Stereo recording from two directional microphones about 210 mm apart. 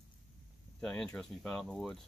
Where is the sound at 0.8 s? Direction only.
5° left (ahead or behind).